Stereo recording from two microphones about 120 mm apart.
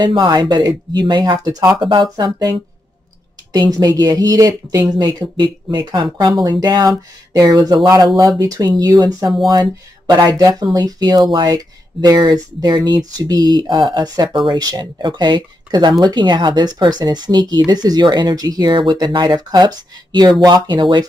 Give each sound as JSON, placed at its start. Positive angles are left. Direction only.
{"t": 0.0, "sound": "speech", "side_deg": -40}
{"t": 3.5, "sound": "speech", "side_deg": -35}